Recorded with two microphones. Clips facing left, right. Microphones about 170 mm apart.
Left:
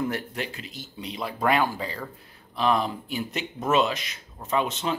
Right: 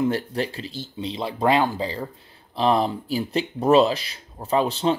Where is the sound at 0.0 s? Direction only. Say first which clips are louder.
Right 6 dB; 30° right (ahead or behind).